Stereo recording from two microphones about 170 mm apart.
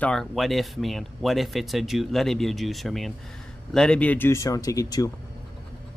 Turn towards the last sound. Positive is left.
turn(degrees=20)  # may be behind; listen again after turning